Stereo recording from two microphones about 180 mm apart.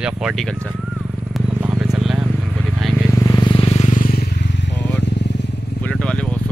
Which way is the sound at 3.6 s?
40° left (ahead or behind).